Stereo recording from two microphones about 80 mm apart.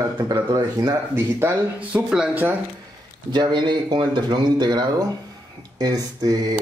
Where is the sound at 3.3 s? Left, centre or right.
Right.